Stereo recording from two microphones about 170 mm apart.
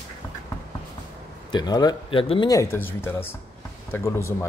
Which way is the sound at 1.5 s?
25° left (ahead or behind).